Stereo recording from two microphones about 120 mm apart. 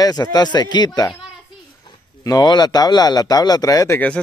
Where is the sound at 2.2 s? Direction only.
35° left (ahead or behind).